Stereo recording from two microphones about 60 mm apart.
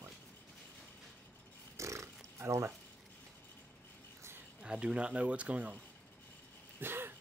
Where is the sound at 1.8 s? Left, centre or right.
Right.